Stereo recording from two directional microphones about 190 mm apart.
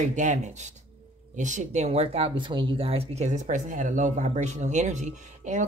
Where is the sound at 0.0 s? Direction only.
40° right (ahead or behind).